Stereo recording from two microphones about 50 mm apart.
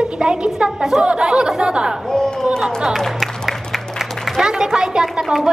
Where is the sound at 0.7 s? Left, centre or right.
Centre.